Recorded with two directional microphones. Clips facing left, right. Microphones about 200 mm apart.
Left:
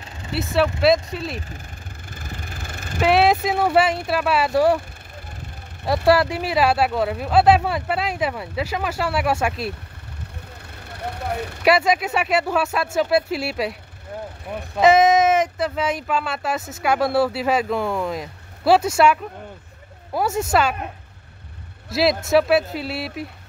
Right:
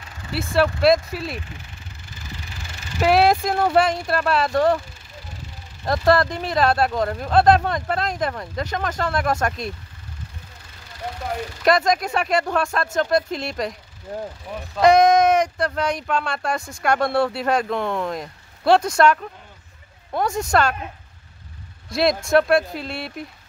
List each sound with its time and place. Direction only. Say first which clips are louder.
0.3 s speech: even; centre (ahead or behind)
2.1 s vehicle: left 3 dB; 55° left (ahead or behind)
3.0 s speech: even; centre (ahead or behind)
6.0 s speech: left 1 dB; 10° left (ahead or behind)
10.9 s speech: left 1 dB; 60° left (ahead or behind)
11.6 s speech: left 1 dB; 10° left (ahead or behind)
14.8 s speech: even; 5° left (ahead or behind)
20.2 s speech: left 1 dB; 5° left (ahead or behind)
21.9 s speech: even; 5° left (ahead or behind)